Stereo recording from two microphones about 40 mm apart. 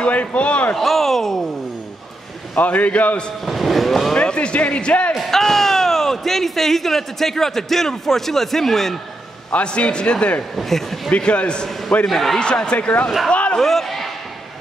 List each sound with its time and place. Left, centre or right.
0.0 s a man's voice: left
0.7 s speech: centre
2.5 s a man's voice: left
3.4 s speech: centre
4.1 s a man's voice: left
5.3 s speech: centre
9.5 s a man's voice: left
10.5 s speech: centre
11.1 s a man's voice: left
12.1 s speech: centre
12.4 s a man's voice: left
12.7 s a man's voice: left
13.3 s basketball bounce: left
13.6 s a sound: centre